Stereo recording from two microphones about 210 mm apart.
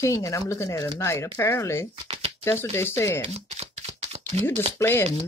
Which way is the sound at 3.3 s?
30° right (ahead or behind).